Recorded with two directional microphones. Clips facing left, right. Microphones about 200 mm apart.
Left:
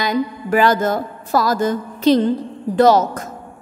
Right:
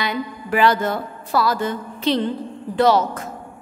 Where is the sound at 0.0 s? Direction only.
45° left (ahead or behind).